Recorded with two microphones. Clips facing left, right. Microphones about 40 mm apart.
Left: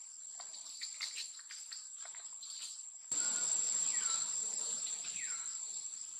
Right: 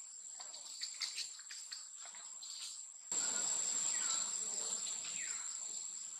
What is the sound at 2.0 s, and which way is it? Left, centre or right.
Bathtub, centre.